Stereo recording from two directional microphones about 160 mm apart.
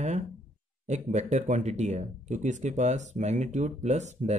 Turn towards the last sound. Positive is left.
turn(degrees=-45)  # may be behind; listen again after turning